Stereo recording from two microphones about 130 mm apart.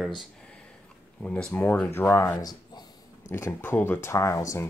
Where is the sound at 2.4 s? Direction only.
30° left (ahead or behind).